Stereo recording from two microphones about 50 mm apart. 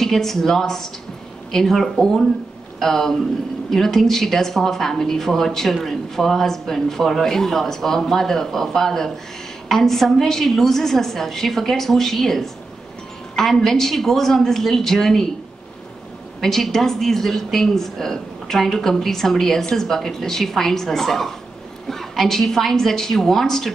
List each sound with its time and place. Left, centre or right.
0.0 s a woman's voice: centre
16.3 s a woman's voice: centre